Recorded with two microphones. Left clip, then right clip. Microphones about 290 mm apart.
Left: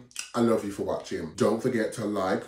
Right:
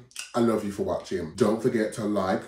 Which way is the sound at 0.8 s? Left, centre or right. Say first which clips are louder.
Right 2 dB; centre.